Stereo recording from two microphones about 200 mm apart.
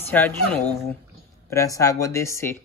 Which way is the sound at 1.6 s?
15° left (ahead or behind).